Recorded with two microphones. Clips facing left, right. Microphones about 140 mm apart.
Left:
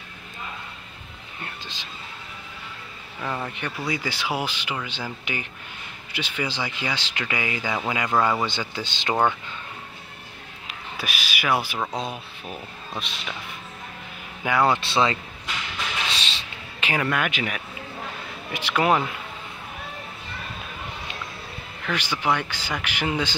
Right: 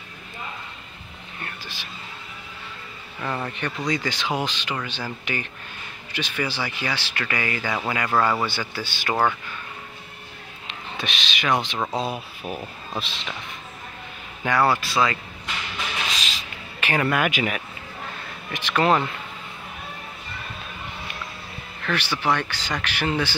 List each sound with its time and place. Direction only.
1.4 s speech: 20° left (ahead or behind)
3.2 s speech: 5° left (ahead or behind)
10.7 s speech: 5° left (ahead or behind)
12.4 s speech: 30° right (ahead or behind)
14.4 s speech: 15° left (ahead or behind)
14.8 s speech: 25° left (ahead or behind)
16.1 s a sound: 30° left (ahead or behind)
17.0 s speech: 5° right (ahead or behind)
18.5 s speech: 10° left (ahead or behind)
21.8 s speech: 15° left (ahead or behind)